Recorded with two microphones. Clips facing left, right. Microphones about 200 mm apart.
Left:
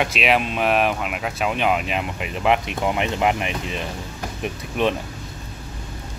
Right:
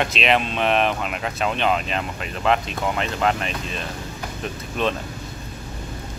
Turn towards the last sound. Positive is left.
turn(degrees=15)  # may be behind; listen again after turning